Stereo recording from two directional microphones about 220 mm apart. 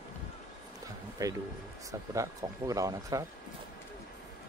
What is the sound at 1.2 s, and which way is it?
Speech, 15° right (ahead or behind).